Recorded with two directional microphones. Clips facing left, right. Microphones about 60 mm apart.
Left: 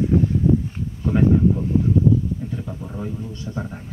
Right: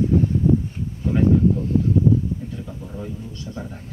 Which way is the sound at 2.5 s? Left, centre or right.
Centre.